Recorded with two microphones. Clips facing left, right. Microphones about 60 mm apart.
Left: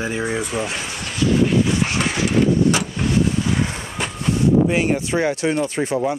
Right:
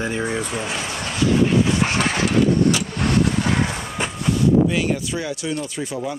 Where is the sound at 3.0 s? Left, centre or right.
Right.